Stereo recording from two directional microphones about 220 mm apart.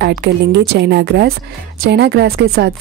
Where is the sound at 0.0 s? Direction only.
50° right (ahead or behind).